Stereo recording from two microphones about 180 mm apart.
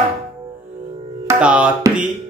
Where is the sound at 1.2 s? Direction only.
5° right (ahead or behind).